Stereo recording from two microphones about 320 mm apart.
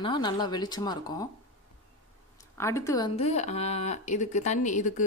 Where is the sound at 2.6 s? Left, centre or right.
Centre.